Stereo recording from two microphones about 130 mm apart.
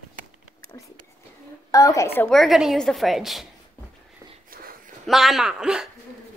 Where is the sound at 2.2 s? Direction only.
Centre (ahead or behind).